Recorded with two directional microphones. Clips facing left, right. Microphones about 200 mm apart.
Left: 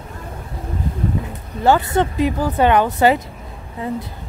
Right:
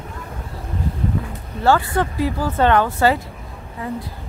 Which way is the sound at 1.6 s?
20° left (ahead or behind).